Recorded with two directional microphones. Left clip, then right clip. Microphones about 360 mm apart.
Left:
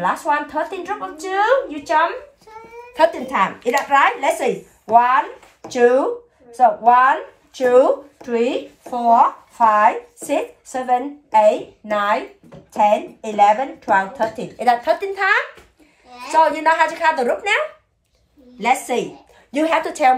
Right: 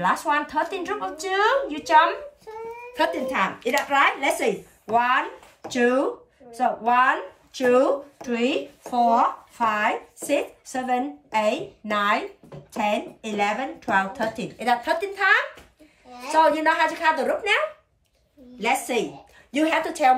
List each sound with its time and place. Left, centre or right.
0.0 s speech: centre
2.9 s speech: centre
13.4 s speech: centre
18.6 s speech: centre